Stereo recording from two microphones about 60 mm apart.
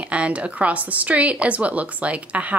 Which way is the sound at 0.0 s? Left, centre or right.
Right.